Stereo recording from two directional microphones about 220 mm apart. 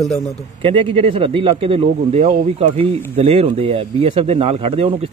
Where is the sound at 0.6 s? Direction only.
25° right (ahead or behind).